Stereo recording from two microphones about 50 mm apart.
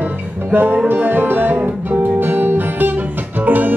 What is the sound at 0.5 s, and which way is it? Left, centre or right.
Music, right.